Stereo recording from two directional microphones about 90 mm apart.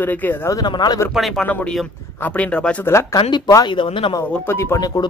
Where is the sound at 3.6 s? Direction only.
70° left (ahead or behind).